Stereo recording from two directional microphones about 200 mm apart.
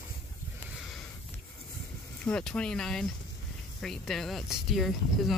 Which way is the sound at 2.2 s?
5° left (ahead or behind).